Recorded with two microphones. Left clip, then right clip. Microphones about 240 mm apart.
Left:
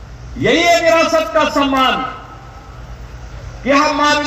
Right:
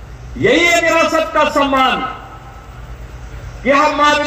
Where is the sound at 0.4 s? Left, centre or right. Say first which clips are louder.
Even; right.